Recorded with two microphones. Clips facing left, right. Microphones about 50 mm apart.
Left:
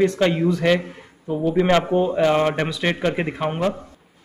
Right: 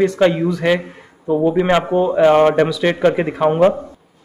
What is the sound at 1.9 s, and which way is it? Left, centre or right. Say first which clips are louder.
A man's voice: right 6 dB; centre.